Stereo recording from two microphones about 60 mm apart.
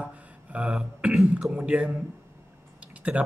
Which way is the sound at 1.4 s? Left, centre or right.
Centre.